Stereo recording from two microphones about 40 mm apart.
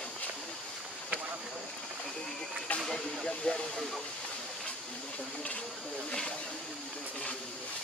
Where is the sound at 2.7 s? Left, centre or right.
Left.